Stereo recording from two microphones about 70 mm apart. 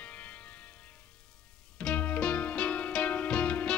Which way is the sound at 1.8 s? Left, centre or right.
Centre.